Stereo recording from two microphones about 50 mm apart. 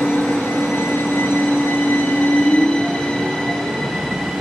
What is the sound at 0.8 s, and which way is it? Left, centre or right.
Vehicle, left.